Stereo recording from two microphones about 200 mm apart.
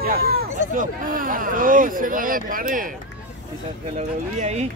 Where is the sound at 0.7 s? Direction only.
45° right (ahead or behind).